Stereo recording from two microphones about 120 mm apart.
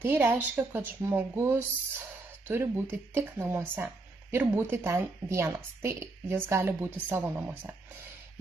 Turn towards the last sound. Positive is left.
turn(degrees=-15)  # may be behind; listen again after turning